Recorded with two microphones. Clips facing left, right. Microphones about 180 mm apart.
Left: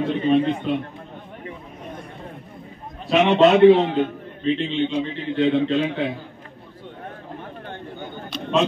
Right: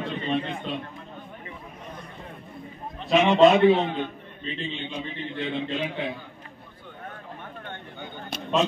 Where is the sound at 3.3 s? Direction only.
70° left (ahead or behind).